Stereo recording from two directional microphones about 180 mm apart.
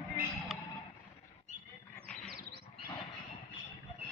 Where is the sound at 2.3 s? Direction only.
60° right (ahead or behind).